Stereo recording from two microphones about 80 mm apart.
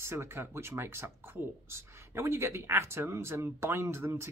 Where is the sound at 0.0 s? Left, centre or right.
Right.